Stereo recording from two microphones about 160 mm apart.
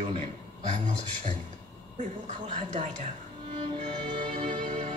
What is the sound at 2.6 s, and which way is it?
Speech, 45° right (ahead or behind).